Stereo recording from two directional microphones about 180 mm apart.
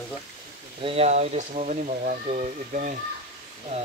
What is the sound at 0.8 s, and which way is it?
Speech, 35° right (ahead or behind).